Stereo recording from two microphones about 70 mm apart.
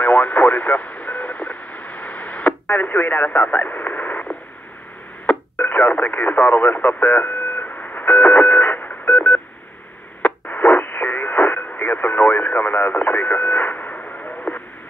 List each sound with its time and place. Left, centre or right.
0.0 s radio: left